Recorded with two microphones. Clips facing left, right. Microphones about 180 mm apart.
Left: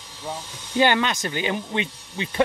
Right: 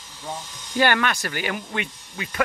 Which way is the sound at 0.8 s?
20° left (ahead or behind).